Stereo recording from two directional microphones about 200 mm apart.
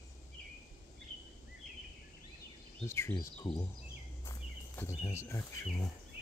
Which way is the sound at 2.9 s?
15° left (ahead or behind).